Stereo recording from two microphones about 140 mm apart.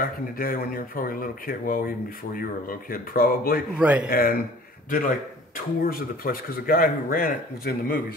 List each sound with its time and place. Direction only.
0.0 s speech: 90° left
3.7 s a man's voice: 10° right (ahead or behind)
4.1 s speech: 90° left
4.8 s a man's voice: 75° left (ahead or behind)
5.9 s speech: 90° left